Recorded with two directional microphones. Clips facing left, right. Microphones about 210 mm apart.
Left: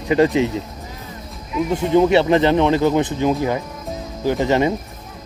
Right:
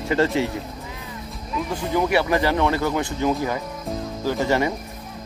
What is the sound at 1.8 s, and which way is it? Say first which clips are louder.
Speech: left 7 dB; 25° left (ahead or behind).